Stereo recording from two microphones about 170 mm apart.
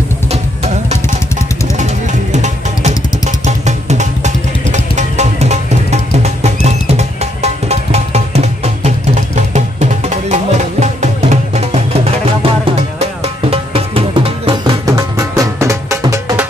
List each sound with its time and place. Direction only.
1.8 s music: 45° right (ahead or behind)
14.9 s music: 20° right (ahead or behind)